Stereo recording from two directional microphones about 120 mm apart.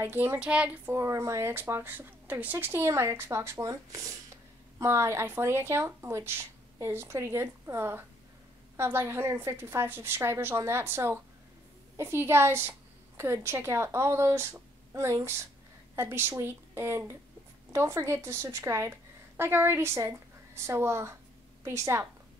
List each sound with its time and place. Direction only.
0.0 s a woman's voice: 20° right (ahead or behind)
0.9 s a woman's voice: 25° right (ahead or behind)